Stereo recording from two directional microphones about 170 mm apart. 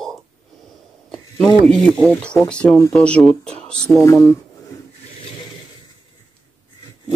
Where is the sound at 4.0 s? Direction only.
15° left (ahead or behind).